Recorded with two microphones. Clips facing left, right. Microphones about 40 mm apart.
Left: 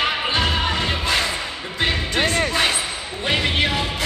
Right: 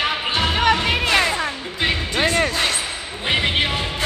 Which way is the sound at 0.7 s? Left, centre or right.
Right.